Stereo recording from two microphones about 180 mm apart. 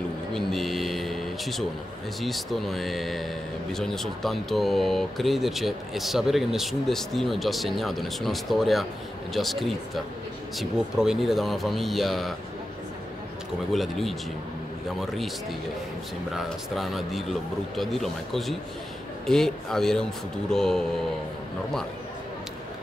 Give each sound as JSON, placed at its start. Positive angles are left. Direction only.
{"t": 0.3, "sound": "a sound", "side_deg": 0}
{"t": 2.2, "sound": "speech", "side_deg": 0}
{"t": 13.7, "sound": "speech", "side_deg": 0}
{"t": 16.3, "sound": "speech", "side_deg": 0}